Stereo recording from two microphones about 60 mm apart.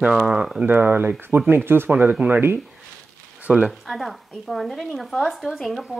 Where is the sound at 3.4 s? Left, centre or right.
Right.